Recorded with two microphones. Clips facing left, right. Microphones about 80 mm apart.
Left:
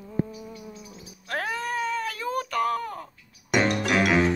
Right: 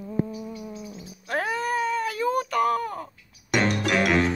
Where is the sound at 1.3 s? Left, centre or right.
Centre.